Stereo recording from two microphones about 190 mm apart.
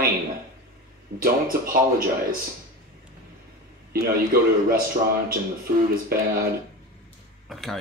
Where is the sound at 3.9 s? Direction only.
50° right (ahead or behind).